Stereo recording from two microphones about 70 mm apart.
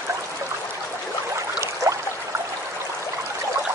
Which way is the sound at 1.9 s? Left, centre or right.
Right.